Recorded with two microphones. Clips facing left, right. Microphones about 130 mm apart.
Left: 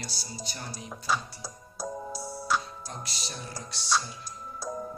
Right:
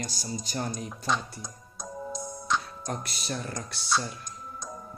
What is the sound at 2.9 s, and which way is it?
Speech, 55° right (ahead or behind).